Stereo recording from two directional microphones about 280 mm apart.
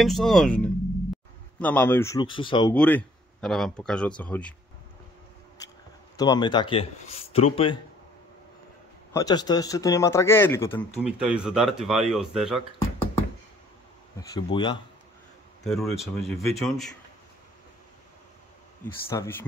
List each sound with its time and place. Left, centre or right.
0.0 s speech: centre
2.7 s speech: centre
5.6 s a sound: centre
6.1 s speech: centre
9.1 s speech: centre
11.0 s speech: centre
14.3 s speech: centre
15.6 s speech: centre
19.0 s speech: centre